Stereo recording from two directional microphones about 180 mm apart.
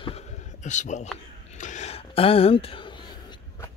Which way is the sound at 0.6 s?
40° left (ahead or behind).